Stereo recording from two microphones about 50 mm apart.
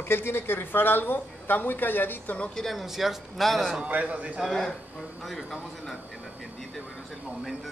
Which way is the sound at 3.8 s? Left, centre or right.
Right.